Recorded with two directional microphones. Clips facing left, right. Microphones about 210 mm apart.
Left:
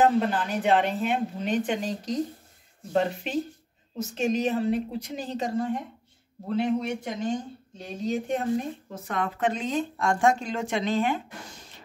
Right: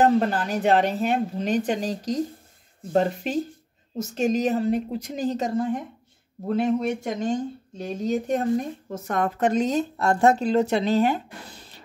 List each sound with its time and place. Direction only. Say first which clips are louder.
0.0 s speech: right 2 dB; 40° right (ahead or behind)
6.5 s speech: right 3 dB; 50° right (ahead or behind)